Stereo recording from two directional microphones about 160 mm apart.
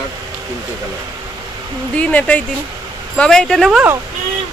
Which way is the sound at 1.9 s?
10° left (ahead or behind).